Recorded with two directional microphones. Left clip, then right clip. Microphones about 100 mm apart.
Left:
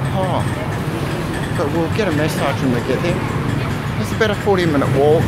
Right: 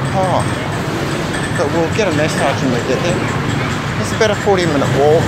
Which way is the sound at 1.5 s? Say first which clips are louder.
Right 3 dB; 40° left (ahead or behind).